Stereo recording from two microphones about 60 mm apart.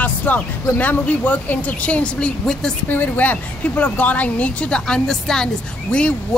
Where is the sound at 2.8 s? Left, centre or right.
Left.